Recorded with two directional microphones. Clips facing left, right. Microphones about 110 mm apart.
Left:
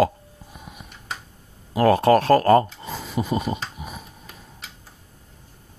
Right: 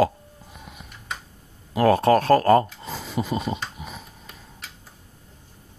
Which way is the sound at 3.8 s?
20° left (ahead or behind).